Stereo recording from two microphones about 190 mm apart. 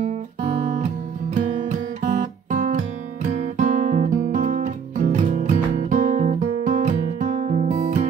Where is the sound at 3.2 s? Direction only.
45° right (ahead or behind).